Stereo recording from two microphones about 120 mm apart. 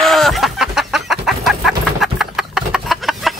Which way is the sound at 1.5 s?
Centre (ahead or behind).